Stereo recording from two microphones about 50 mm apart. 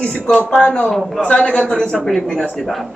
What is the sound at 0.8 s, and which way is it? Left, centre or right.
Speech, centre.